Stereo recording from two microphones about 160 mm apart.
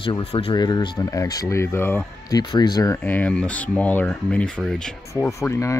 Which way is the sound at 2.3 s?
25° left (ahead or behind).